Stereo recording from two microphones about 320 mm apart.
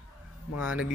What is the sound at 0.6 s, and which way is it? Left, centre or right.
Speech, centre.